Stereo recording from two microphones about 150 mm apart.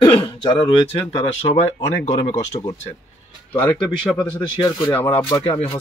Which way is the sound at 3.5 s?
30° left (ahead or behind).